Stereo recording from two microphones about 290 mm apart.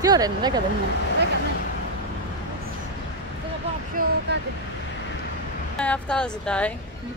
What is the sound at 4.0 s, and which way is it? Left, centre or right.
Vehicle, right.